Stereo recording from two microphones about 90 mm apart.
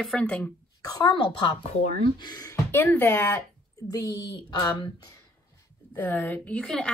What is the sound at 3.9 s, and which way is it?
Speech, 40° left (ahead or behind).